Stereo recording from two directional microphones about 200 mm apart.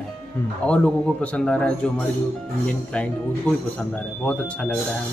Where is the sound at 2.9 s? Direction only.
5° left (ahead or behind).